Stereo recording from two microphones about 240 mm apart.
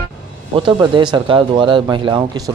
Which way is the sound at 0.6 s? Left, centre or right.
Centre.